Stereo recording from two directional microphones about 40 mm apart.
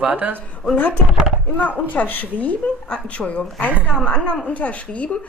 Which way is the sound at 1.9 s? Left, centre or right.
Left.